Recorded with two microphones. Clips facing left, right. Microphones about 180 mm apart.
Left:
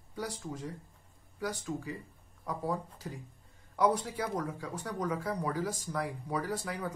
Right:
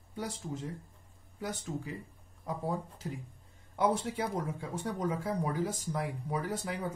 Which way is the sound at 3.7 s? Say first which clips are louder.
Left 1 dB; 25° right (ahead or behind).